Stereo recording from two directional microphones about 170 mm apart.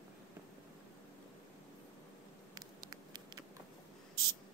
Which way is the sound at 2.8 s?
25° right (ahead or behind).